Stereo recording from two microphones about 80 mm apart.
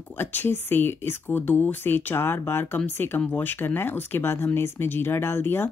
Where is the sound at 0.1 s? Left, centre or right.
Left.